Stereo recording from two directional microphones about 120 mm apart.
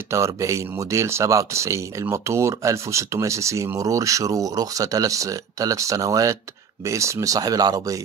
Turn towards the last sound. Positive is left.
turn(degrees=-30)  # may be behind; listen again after turning